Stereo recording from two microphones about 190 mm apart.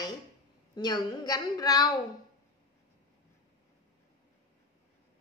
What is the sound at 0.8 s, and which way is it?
A woman's voice, 20° left (ahead or behind).